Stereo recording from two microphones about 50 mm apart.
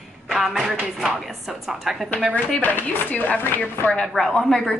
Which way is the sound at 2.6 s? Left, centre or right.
Left.